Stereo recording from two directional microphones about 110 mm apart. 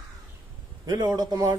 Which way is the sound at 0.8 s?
40° right (ahead or behind).